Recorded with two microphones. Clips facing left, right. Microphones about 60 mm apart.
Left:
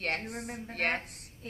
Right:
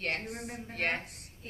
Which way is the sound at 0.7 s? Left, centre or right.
Left.